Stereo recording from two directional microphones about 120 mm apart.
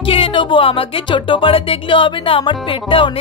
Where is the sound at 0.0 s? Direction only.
50° left (ahead or behind).